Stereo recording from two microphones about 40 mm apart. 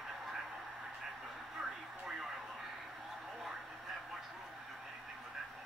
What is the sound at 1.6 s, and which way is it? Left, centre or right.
Vehicle, right.